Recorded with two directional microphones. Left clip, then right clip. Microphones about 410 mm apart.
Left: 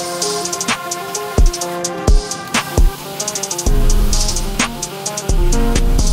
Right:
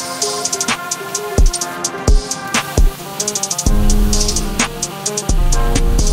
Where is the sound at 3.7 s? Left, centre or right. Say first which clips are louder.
Right 2 dB; centre.